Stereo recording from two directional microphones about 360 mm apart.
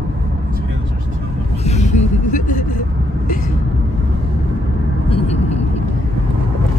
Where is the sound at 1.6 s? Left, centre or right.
Centre.